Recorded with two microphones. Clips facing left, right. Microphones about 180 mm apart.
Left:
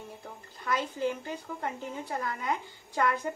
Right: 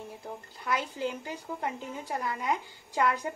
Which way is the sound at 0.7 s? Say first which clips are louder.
Left 3 dB; 10° right (ahead or behind).